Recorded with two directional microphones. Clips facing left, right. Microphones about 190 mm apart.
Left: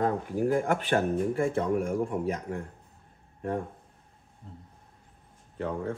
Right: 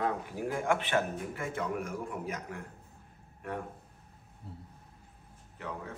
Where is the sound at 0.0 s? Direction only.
45° left (ahead or behind).